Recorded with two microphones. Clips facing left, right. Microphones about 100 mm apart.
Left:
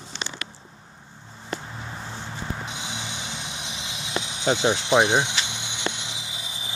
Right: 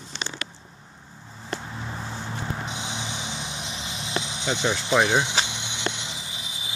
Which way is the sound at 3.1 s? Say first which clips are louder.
Right 2 dB; 55° left (ahead or behind).